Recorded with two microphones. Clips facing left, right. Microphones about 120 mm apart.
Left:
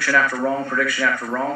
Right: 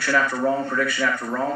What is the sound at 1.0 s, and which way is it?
Speech, 50° left (ahead or behind).